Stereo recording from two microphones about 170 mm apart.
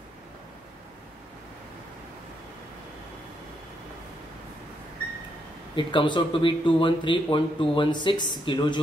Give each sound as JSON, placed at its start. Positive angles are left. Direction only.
{"t": 5.8, "sound": "speech", "side_deg": 30}